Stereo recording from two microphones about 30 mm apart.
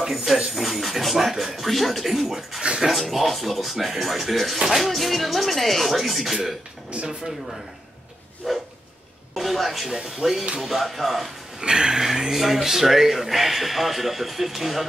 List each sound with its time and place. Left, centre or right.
0.0 s speech: centre
1.7 s speech: centre
8.4 s speech: centre
10.0 s speech: centre
11.6 s a sound: right
12.0 s speech: centre